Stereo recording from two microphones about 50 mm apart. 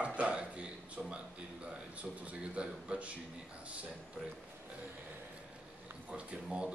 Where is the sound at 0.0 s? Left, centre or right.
Right.